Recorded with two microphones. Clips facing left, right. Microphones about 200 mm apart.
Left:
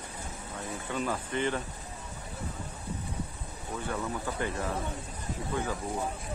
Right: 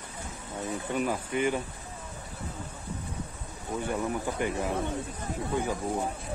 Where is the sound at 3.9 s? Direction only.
15° right (ahead or behind).